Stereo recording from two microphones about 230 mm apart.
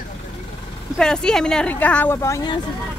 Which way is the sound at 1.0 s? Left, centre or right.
Centre.